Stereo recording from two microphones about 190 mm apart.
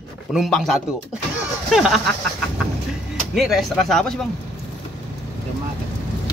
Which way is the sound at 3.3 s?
Centre (ahead or behind).